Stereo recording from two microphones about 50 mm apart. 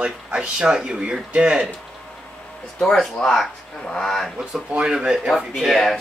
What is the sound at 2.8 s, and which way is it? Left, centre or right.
Speech, centre.